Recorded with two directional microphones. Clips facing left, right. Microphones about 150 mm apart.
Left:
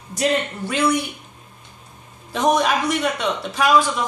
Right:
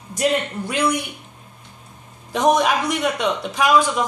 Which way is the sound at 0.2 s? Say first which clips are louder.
Even; 10° right (ahead or behind).